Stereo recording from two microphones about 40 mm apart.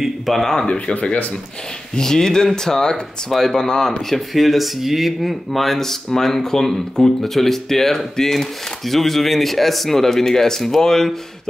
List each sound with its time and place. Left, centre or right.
0.3 s speech: centre
0.7 s speech: left
2.0 s speech: centre